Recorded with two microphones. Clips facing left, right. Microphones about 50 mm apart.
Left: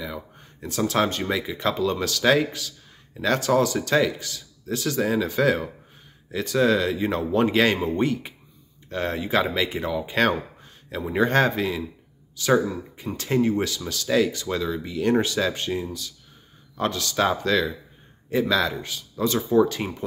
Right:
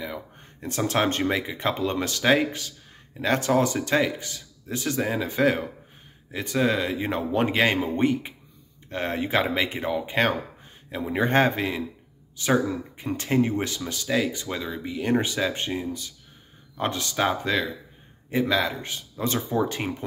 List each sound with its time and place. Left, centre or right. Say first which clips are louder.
0.0 s speech: even; right
14.0 s speech: left 4 dB; centre
14.3 s speech: left 4 dB; right
18.8 s speech: left 4 dB; right